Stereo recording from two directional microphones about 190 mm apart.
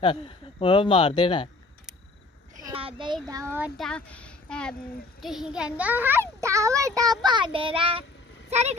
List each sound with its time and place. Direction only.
0.0 s speech: 25° left (ahead or behind)
2.6 s a child's voice: 30° right (ahead or behind)
3.5 s a woman's voice: 5° right (ahead or behind); by 8.7 s 35° right (ahead or behind)